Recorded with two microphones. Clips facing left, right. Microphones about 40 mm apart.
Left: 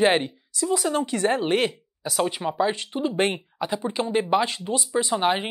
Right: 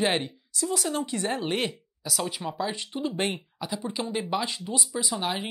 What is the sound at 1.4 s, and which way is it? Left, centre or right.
Speech, centre.